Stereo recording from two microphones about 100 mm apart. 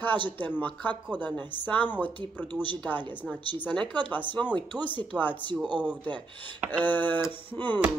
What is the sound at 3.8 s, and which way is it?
Speech, 50° right (ahead or behind).